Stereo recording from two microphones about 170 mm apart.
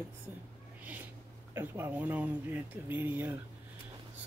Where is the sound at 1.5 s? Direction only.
15° right (ahead or behind).